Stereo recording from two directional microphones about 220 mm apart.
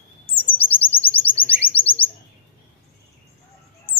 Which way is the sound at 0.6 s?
5° left (ahead or behind).